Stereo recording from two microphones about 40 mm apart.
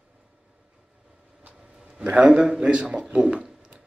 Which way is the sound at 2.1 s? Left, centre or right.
Right.